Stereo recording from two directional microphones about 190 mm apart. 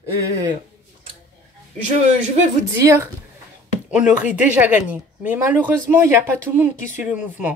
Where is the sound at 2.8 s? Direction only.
15° right (ahead or behind).